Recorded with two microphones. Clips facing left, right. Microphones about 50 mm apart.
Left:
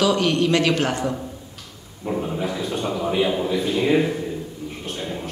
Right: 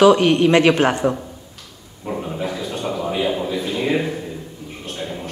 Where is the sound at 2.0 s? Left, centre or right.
Centre.